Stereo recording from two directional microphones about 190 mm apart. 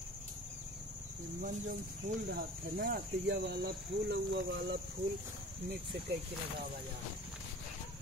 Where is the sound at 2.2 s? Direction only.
55° right (ahead or behind).